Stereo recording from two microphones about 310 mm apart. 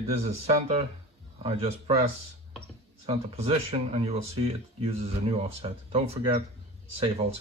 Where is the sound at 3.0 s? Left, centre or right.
Centre.